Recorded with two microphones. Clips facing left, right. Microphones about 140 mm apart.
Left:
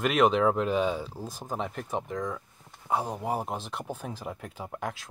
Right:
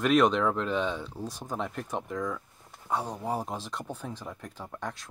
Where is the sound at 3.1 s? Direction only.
5° left (ahead or behind).